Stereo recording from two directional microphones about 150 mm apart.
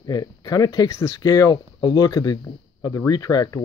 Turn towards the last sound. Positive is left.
turn(degrees=25)  # may be behind; listen again after turning